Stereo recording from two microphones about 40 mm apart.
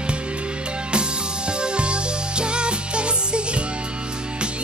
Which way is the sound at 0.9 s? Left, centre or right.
Right.